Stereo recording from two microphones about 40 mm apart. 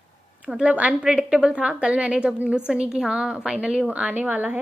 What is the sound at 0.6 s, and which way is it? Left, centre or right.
Speech, right.